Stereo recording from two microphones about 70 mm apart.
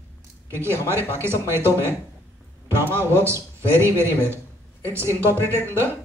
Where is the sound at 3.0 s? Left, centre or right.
Right.